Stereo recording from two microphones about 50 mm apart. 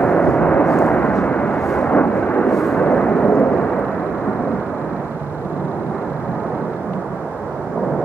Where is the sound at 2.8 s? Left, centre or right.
Left.